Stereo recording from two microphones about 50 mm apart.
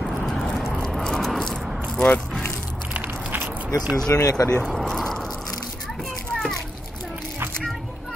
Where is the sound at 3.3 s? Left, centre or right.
Right.